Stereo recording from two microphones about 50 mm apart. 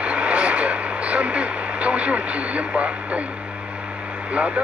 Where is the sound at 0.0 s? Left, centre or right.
Right.